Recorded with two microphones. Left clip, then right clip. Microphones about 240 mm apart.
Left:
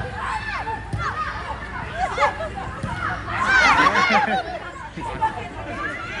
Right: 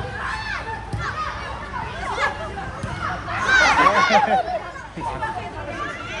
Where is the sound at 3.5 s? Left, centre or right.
Left.